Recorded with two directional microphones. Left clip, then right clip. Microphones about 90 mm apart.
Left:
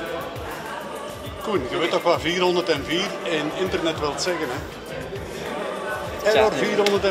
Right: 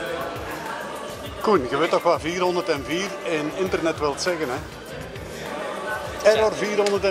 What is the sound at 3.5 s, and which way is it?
Speech, 5° right (ahead or behind).